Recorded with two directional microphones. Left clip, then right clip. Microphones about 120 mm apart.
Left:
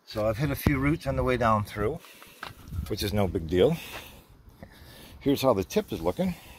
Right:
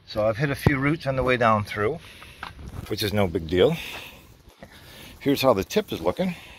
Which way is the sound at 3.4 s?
30° left (ahead or behind).